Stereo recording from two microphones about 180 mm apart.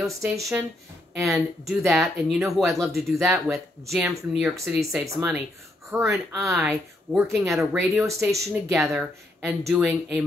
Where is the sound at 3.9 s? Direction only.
5° right (ahead or behind).